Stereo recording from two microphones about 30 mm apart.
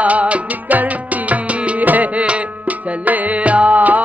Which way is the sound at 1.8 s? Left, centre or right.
Right.